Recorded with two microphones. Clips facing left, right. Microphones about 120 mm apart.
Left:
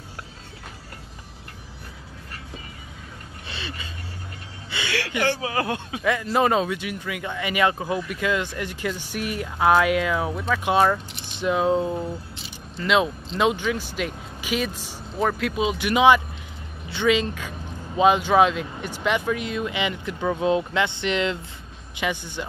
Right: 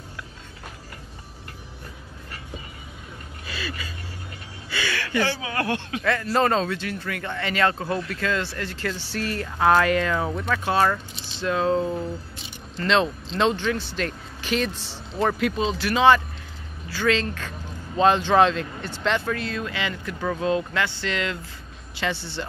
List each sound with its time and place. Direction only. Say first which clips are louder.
3.4 s a sound: right 2 dB; 25° left (ahead or behind)
5.4 s speech: left 1 dB; 25° left (ahead or behind)
15.2 s speech: even; centre (ahead or behind)